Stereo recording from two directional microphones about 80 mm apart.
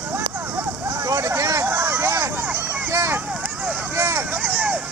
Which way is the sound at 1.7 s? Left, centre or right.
Right.